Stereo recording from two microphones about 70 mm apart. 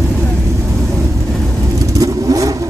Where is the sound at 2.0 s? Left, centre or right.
Right.